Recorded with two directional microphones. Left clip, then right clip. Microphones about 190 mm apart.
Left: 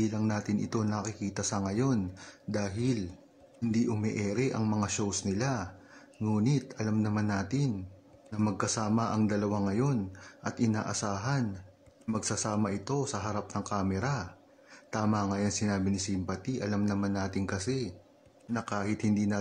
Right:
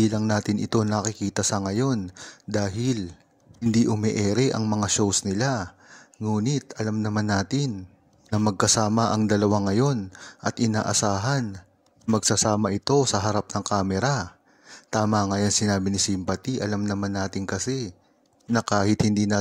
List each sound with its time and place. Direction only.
0.3 s speech: 45° right (ahead or behind)